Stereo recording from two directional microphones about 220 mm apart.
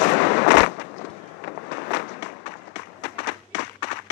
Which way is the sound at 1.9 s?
50° left (ahead or behind).